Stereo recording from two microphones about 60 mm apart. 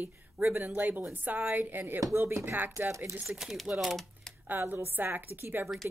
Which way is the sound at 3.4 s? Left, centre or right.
Centre.